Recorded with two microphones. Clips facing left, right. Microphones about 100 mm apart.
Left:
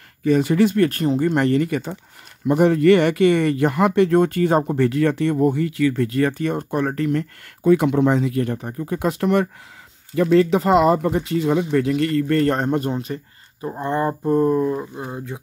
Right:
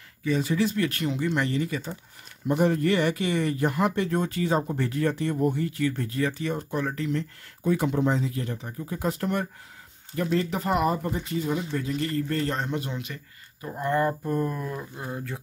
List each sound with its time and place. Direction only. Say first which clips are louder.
0.2 s speech: left 8 dB; 60° left (ahead or behind)
2.4 s speech: left 8 dB; 85° left; by 15.3 s 20° left (ahead or behind)